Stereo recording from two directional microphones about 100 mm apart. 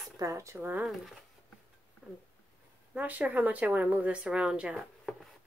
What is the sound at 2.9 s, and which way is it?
Speech, 15° right (ahead or behind).